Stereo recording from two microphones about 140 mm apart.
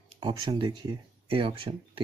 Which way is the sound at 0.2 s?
35° right (ahead or behind).